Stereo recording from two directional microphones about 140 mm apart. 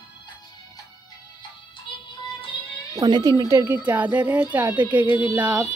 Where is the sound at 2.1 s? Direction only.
35° left (ahead or behind).